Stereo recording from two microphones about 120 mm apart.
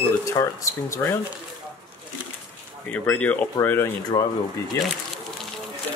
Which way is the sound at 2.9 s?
10° left (ahead or behind).